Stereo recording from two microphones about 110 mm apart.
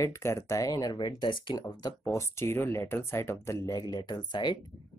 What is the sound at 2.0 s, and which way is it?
Speech, 25° left (ahead or behind).